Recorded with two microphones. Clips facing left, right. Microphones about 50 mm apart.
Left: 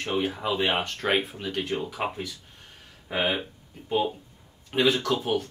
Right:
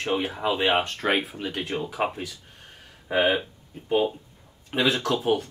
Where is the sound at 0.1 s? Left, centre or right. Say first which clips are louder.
Right 1 dB; right.